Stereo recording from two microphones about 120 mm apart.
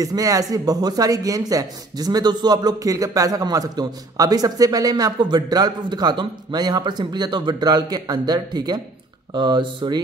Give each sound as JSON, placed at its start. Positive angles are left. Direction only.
{"t": 0.0, "sound": "speech", "side_deg": -30}